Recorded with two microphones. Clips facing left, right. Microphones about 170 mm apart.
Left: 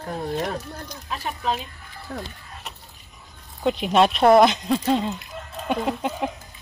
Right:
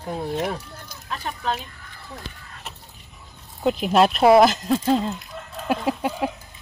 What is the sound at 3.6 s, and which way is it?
Speech, centre (ahead or behind).